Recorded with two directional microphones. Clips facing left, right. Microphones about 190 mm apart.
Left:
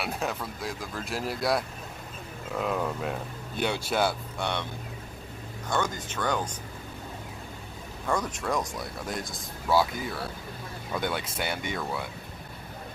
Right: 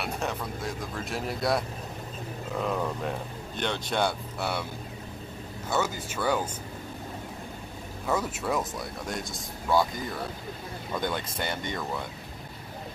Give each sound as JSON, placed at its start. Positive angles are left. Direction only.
{"t": 0.0, "sound": "speech", "side_deg": 0}
{"t": 5.7, "sound": "speech", "side_deg": -5}
{"t": 8.1, "sound": "speech", "side_deg": -5}